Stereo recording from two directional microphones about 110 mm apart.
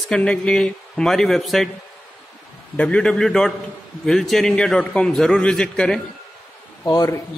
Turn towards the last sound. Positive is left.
turn(degrees=35)  # may be behind; listen again after turning